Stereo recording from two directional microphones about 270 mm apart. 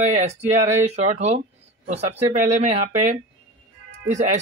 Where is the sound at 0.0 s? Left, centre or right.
Right.